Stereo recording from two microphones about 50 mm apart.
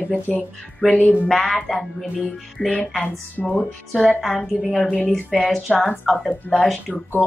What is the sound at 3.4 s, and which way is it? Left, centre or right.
Speech, centre.